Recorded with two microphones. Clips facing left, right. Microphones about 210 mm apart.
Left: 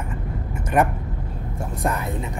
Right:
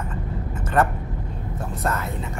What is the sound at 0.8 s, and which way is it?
Speech, 15° left (ahead or behind).